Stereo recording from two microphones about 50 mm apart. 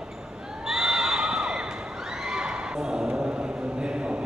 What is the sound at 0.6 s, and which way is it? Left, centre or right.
Neigh, centre.